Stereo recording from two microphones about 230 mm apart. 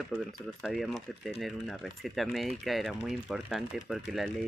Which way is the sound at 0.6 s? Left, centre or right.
Centre.